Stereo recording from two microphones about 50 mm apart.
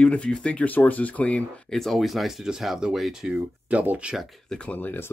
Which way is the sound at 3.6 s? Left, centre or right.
Right.